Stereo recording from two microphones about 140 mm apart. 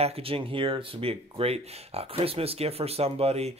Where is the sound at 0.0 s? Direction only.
45° right (ahead or behind).